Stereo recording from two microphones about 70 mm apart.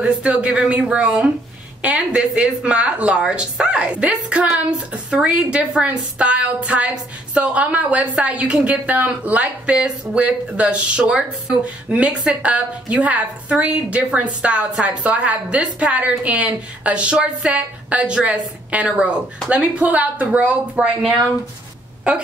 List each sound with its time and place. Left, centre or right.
0.0 s a woman's voice: centre
22.1 s a woman's voice: centre